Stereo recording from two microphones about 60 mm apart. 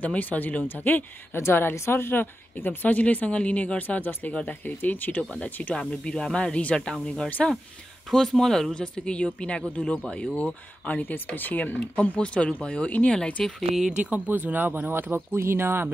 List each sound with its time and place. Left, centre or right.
0.0 s a woman's voice: left
1.3 s a woman's voice: left
5.2 s a woman's voice: centre
13.4 s speech: centre
13.8 s speech: right